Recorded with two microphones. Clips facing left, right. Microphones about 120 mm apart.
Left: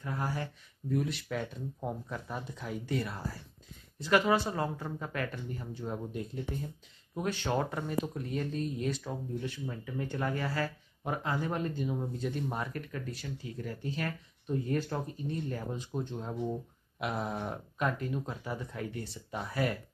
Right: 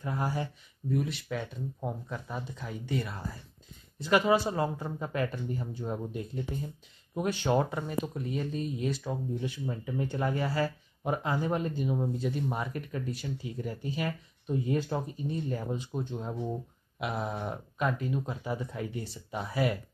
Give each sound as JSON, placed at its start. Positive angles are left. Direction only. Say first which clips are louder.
{"t": 0.0, "sound": "speech", "louder": "right 3 dB", "side_deg": -15}
{"t": 0.8, "sound": "speech", "louder": "right 1 dB", "side_deg": 0}
{"t": 4.1, "sound": "speech", "louder": "right 2 dB", "side_deg": -10}
{"t": 9.4, "sound": "speech", "louder": "right 3 dB", "side_deg": -15}
{"t": 12.2, "sound": "speech", "louder": "right 2 dB", "side_deg": -5}